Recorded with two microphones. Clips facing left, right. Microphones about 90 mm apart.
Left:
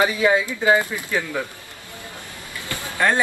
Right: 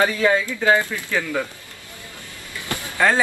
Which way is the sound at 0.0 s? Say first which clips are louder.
Even; 10° left (ahead or behind).